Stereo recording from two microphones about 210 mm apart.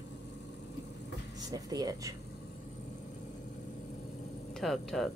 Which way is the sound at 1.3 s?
20° right (ahead or behind).